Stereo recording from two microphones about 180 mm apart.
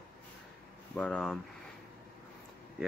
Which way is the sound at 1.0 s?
5° left (ahead or behind).